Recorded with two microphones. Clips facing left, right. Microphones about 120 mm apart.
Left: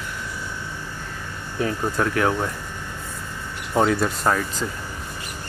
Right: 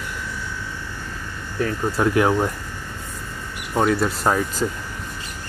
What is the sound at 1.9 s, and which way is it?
Speech, 15° right (ahead or behind).